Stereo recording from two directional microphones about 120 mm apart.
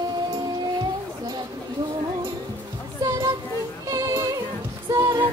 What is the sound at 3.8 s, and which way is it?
Music, 30° right (ahead or behind).